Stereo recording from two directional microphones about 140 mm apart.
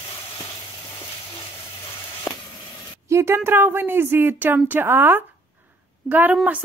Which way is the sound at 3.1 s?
20° right (ahead or behind).